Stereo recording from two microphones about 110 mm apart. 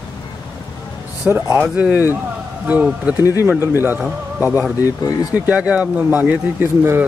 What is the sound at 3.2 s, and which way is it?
Speech, 30° left (ahead or behind).